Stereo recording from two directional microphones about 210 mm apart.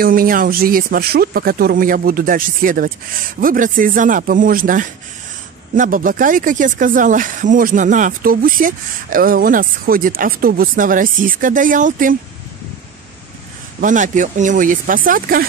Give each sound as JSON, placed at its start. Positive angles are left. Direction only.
{"t": 0.0, "sound": "speech", "side_deg": -45}
{"t": 13.7, "sound": "speech", "side_deg": -35}